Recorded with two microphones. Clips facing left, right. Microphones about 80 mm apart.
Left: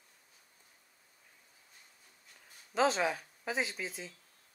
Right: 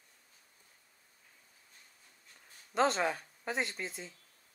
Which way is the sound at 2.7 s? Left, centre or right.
Centre.